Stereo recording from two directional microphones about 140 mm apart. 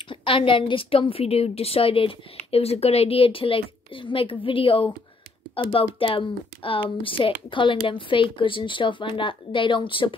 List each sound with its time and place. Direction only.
0.1 s speech: 40° left (ahead or behind)